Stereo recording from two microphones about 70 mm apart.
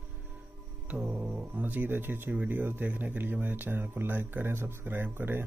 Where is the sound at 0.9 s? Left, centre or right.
Centre; by 5.4 s right.